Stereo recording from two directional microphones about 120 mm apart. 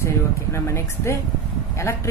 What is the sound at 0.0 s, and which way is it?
Speech, 25° left (ahead or behind).